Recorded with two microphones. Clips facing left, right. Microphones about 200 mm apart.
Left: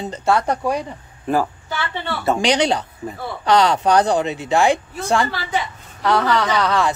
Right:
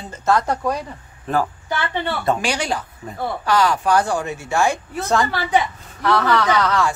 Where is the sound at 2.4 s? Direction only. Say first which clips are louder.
Left 5 dB; 20° left (ahead or behind).